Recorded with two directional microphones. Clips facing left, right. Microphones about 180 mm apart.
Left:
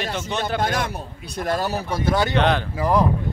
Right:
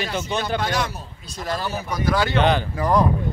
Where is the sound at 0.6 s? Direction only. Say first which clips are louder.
Left 1 dB; 50° left (ahead or behind).